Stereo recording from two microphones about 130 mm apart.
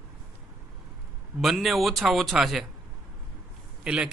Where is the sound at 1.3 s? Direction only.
Centre (ahead or behind).